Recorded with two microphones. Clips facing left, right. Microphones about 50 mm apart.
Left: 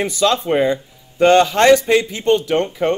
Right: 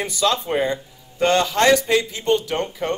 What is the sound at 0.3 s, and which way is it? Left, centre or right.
A man's voice, left.